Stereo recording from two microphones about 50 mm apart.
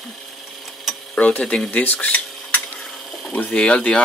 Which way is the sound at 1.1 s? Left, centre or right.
Left.